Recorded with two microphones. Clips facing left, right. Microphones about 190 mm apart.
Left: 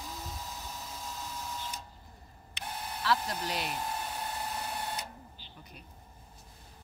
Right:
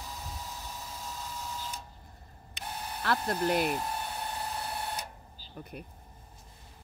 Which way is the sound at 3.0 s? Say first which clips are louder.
Right 3 dB; 55° right (ahead or behind).